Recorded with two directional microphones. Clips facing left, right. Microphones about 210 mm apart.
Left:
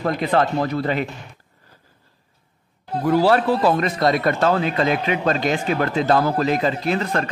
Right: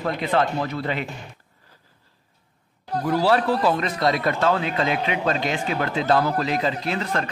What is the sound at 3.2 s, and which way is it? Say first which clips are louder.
A man's voice: left 3 dB; 50° left (ahead or behind).